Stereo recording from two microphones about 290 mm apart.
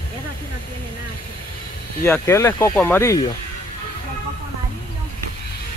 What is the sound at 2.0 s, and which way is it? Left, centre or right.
Speech, centre.